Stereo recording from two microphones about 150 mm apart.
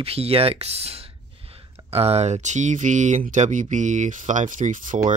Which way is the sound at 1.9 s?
45° right (ahead or behind).